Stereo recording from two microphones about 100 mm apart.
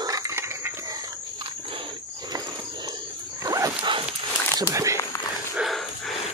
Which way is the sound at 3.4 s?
35° right (ahead or behind).